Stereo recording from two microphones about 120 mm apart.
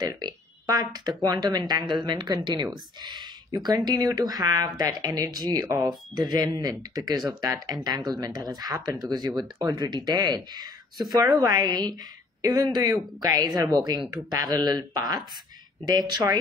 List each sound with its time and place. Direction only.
0.1 s speech: 35° right (ahead or behind)